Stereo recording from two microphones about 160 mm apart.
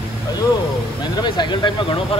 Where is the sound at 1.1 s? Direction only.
30° left (ahead or behind).